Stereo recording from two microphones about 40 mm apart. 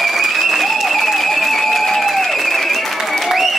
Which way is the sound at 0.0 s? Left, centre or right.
Centre.